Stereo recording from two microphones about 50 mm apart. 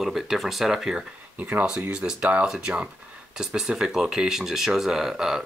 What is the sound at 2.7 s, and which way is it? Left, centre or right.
Speech, right.